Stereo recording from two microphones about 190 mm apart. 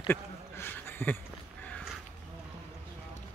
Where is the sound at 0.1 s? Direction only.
10° left (ahead or behind).